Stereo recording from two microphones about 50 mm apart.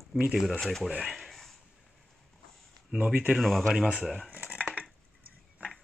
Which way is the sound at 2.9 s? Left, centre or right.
Centre.